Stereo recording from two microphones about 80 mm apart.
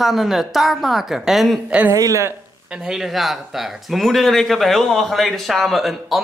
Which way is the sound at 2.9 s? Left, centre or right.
Centre.